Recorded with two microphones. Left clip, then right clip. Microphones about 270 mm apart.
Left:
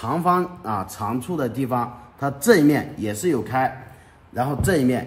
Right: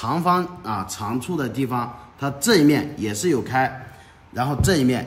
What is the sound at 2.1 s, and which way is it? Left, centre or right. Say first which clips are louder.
Speech: left 4 dB; centre.